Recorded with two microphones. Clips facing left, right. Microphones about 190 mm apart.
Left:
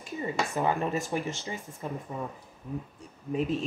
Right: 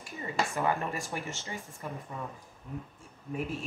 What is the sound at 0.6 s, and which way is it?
Speech, 15° left (ahead or behind).